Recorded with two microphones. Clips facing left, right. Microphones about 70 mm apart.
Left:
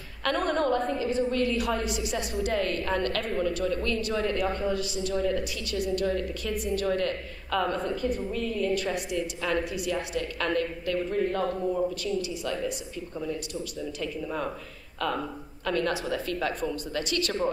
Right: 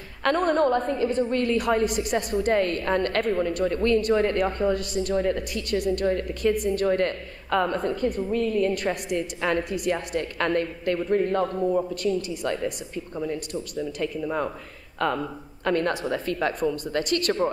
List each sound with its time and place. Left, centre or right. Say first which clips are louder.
0.2 s a woman's voice: right 5 dB; right